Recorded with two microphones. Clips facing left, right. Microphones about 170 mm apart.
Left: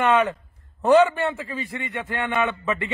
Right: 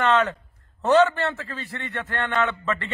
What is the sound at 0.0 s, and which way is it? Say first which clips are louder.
A man's voice: left 1 dB; 15° left (ahead or behind).